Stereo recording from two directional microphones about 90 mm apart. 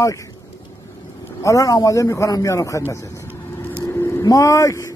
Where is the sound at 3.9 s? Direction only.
30° left (ahead or behind).